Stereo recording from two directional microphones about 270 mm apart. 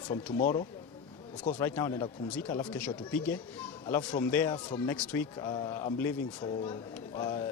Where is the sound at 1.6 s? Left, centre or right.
Centre.